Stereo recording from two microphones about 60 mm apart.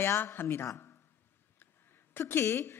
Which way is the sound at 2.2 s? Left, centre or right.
Left.